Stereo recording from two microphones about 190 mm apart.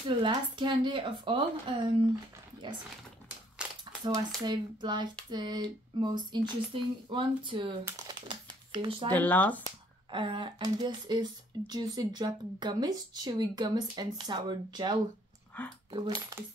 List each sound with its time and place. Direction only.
0.2 s speech: 25° right (ahead or behind)
3.6 s a sound: 5° right (ahead or behind)
4.5 s speech: 25° right (ahead or behind)
8.1 s crumpling: 25° right (ahead or behind)
9.1 s speech: 10° left (ahead or behind)
10.1 s speech: 25° right (ahead or behind)
15.5 s speech: 10° left (ahead or behind)
15.9 s speech: 25° right (ahead or behind)